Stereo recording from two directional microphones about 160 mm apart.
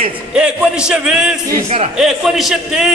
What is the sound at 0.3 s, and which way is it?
A man's voice, 5° right (ahead or behind).